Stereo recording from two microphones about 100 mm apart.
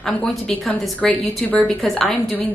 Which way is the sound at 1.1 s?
15° left (ahead or behind).